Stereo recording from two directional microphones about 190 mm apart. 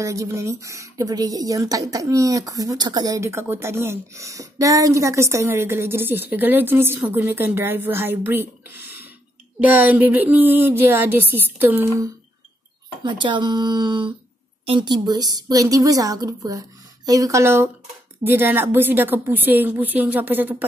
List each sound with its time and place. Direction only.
0.0 s speech: 15° right (ahead or behind)
13.0 s a woman's voice: 25° right (ahead or behind)